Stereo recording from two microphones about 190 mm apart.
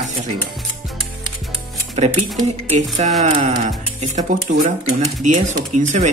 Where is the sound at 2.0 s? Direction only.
35° right (ahead or behind).